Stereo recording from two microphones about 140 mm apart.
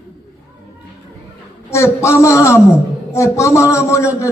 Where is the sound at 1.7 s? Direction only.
20° left (ahead or behind).